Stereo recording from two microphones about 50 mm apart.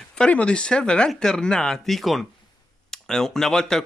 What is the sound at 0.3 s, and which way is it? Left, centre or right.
Speech, left.